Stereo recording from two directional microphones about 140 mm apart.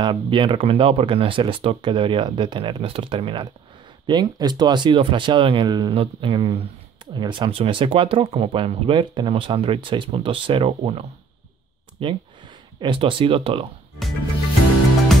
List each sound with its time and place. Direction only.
0.0 s speech: 35° right (ahead or behind)